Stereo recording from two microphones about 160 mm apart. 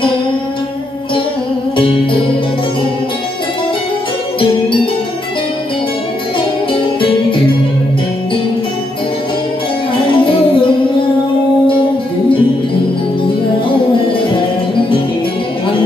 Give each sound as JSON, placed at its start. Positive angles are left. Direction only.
{"t": 6.7, "sound": "music", "side_deg": 30}
{"t": 10.1, "sound": "music", "side_deg": 30}